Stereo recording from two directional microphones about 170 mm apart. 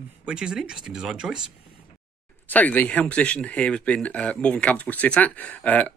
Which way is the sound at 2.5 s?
10° left (ahead or behind).